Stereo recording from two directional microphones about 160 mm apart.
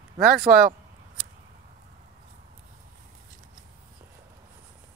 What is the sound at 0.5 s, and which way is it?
Speech, 20° right (ahead or behind).